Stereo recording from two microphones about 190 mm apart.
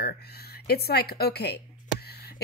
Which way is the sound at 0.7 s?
55° left (ahead or behind).